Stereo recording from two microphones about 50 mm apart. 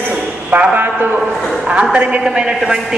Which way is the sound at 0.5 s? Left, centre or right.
Right.